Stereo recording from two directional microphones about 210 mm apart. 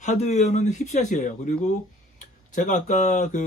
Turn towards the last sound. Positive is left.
turn(degrees=35)  # may be behind; listen again after turning